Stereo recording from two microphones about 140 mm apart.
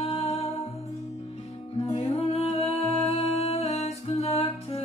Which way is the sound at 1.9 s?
50° left (ahead or behind).